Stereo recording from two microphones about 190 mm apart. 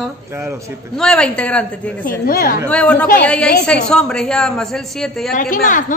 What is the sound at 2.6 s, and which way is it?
A woman's voice, 5° left (ahead or behind).